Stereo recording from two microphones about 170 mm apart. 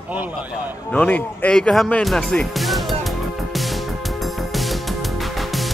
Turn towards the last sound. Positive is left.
turn(degrees=0)  # may be behind; listen again after turning